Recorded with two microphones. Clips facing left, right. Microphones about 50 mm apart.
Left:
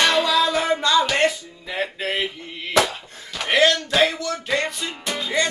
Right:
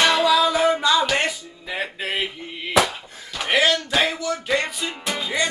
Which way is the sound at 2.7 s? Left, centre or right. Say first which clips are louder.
Even; centre.